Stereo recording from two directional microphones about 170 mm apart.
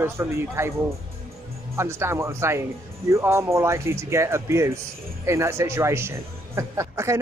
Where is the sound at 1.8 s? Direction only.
15° right (ahead or behind).